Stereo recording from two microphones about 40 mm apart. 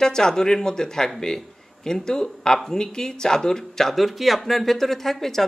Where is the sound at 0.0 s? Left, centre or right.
Centre.